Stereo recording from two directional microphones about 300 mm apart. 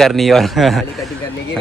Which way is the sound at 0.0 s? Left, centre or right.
Centre.